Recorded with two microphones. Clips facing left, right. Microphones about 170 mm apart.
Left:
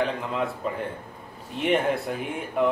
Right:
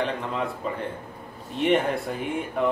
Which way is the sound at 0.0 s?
Centre (ahead or behind).